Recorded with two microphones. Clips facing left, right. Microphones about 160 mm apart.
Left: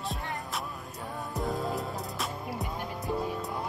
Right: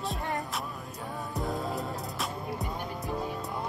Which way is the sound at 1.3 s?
Centre (ahead or behind).